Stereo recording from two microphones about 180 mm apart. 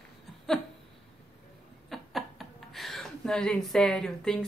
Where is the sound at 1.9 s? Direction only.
Centre (ahead or behind).